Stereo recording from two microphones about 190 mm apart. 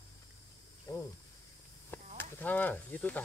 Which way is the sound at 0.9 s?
20° left (ahead or behind).